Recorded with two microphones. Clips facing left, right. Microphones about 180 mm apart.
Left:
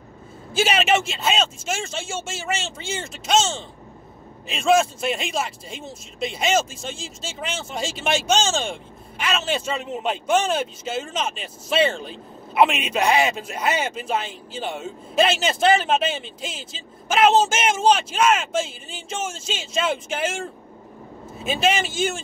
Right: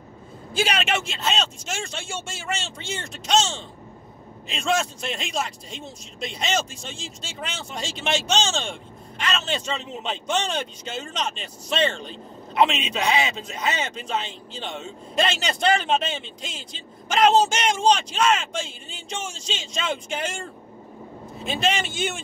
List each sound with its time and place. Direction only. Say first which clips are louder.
0.5 s a man's voice: left 4 dB; 5° left (ahead or behind)
21.5 s speech: left 3 dB; 5° left (ahead or behind)